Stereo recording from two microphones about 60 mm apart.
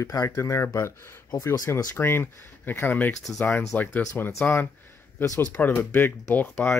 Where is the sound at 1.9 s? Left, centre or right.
Left.